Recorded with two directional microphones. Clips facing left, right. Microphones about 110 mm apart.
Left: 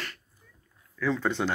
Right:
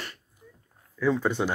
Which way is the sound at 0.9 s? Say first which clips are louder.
Right 3 dB; 15° right (ahead or behind).